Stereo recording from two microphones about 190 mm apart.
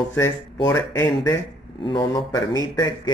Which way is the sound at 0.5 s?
15° left (ahead or behind).